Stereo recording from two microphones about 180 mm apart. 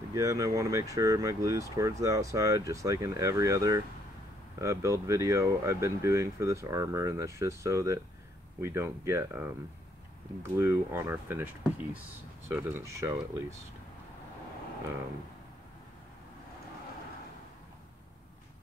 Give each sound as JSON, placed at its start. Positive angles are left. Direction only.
{"t": 0.1, "sound": "speech", "side_deg": -20}
{"t": 10.6, "sound": "speech", "side_deg": -15}
{"t": 12.4, "sound": "speech", "side_deg": -15}